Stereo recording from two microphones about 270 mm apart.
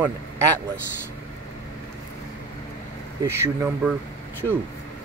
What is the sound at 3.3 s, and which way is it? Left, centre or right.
Speech, centre.